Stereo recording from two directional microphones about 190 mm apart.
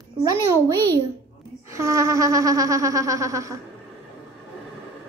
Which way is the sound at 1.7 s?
15° right (ahead or behind).